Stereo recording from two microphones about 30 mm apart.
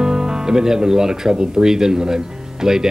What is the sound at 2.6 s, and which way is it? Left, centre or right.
Speech, centre.